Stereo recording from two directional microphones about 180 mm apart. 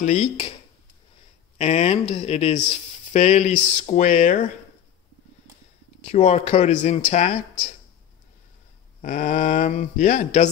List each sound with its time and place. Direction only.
0.0 s speech: 40° left (ahead or behind)
1.6 s speech: 35° left (ahead or behind)
6.0 s speech: 35° left (ahead or behind)
9.0 s speech: 45° left (ahead or behind)